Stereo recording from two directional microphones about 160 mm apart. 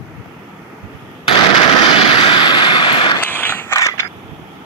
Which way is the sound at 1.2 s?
35° left (ahead or behind).